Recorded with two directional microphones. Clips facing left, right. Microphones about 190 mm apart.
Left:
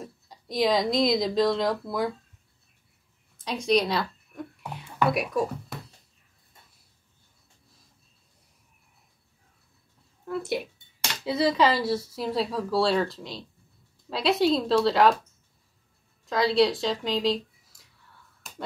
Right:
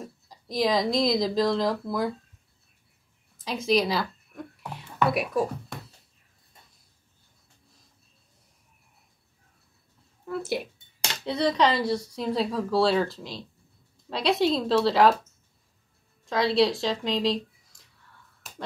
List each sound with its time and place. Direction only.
0.0 s speech: centre (ahead or behind)
3.4 s speech: centre (ahead or behind)
10.2 s speech: centre (ahead or behind)
16.3 s speech: centre (ahead or behind)
18.4 s finger snapping: centre (ahead or behind)